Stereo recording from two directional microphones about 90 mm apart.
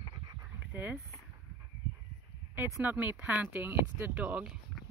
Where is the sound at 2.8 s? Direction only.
20° right (ahead or behind).